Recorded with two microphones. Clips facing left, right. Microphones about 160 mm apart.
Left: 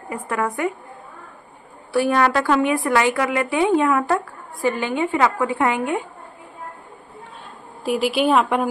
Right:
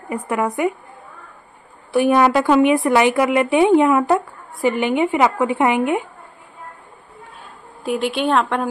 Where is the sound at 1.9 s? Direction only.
15° right (ahead or behind).